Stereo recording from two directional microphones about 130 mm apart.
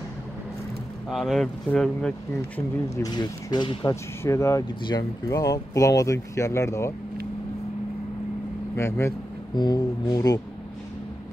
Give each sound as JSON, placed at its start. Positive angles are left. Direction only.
{"t": 1.0, "sound": "speech", "side_deg": 0}
{"t": 3.0, "sound": "speech", "side_deg": 30}
{"t": 8.7, "sound": "speech", "side_deg": 20}
{"t": 9.6, "sound": "speech", "side_deg": 30}